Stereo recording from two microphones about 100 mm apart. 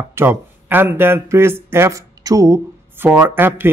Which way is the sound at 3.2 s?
20° right (ahead or behind).